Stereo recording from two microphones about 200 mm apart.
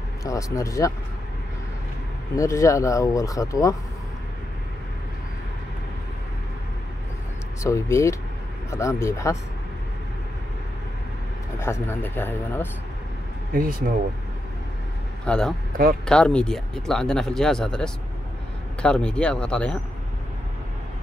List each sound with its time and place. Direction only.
0.2 s speech: 15° left (ahead or behind)
2.3 s speech: 15° left (ahead or behind)
7.6 s speech: 15° left (ahead or behind)
11.6 s speech: 10° left (ahead or behind)
13.5 s speech: 45° right (ahead or behind)
15.2 s speech: 5° left (ahead or behind)
15.7 s speech: 45° right (ahead or behind)
16.1 s speech: 5° left (ahead or behind)